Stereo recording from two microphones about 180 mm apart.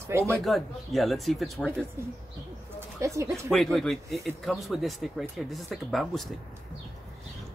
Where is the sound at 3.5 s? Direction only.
Centre (ahead or behind).